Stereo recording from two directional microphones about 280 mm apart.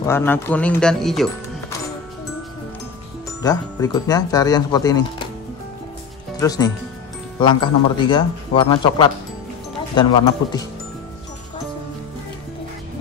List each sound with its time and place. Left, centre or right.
0.0 s speech: centre
3.4 s speech: centre
6.4 s speech: centre